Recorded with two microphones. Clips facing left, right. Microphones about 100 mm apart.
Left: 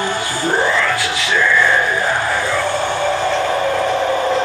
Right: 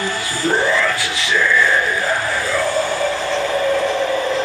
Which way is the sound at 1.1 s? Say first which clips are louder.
Left 1 dB; 25° left (ahead or behind).